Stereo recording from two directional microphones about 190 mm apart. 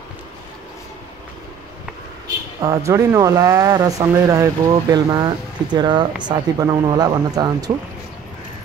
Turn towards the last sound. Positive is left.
turn(degrees=-20)  # may be behind; listen again after turning